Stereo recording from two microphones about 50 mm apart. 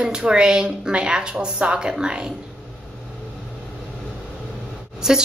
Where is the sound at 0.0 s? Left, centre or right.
Centre.